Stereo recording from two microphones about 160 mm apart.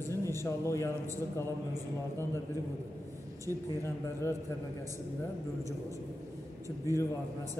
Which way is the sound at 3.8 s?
15° left (ahead or behind).